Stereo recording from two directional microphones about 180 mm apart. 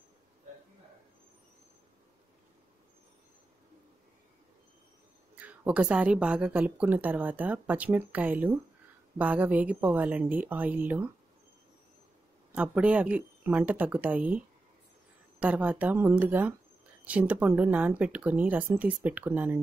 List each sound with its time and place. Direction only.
5.3 s a woman's voice: 10° right (ahead or behind)
12.5 s a woman's voice: 5° right (ahead or behind)